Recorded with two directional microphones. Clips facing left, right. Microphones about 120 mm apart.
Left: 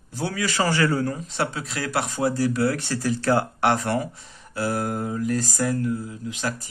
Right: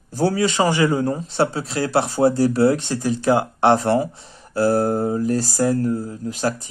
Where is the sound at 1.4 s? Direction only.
35° right (ahead or behind).